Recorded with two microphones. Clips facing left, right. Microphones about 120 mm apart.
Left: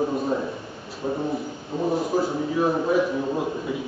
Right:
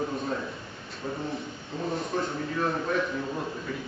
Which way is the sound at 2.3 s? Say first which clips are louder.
Left 6 dB; 15° left (ahead or behind).